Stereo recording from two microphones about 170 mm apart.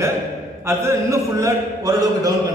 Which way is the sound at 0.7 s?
15° right (ahead or behind).